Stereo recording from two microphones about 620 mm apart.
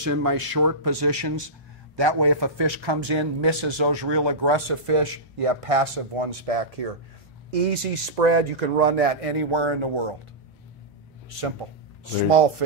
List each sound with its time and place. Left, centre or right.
0.0 s a man's voice: right
7.7 s speech: right
12.0 s speech: right